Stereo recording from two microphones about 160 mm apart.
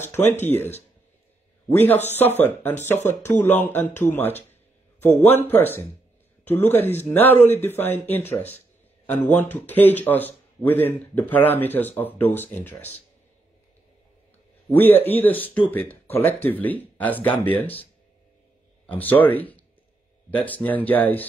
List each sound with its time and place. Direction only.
0.0 s speech: 15° left (ahead or behind)
2.1 s speech: 10° left (ahead or behind)
3.0 s speech: 45° left (ahead or behind)
3.3 s speech: 10° left (ahead or behind)
14.7 s speech: 10° left (ahead or behind)
18.9 s speech: 10° left (ahead or behind)